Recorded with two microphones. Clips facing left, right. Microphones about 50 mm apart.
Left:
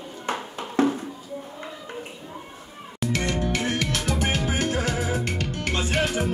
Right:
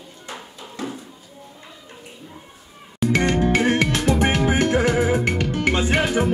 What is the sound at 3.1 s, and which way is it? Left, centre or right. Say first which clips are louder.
Music: right 7 dB; right.